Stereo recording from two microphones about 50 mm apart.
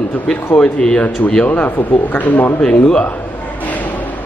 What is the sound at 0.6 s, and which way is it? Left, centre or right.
Speech, centre.